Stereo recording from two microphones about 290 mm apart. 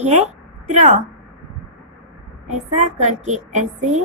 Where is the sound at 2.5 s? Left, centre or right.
Right.